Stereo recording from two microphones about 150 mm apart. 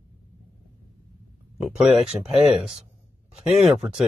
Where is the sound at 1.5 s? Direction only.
5° right (ahead or behind).